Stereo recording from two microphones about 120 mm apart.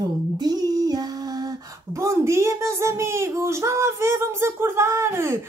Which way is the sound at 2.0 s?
25° right (ahead or behind).